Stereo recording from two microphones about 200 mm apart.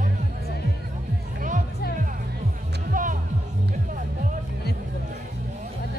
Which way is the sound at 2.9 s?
40° right (ahead or behind).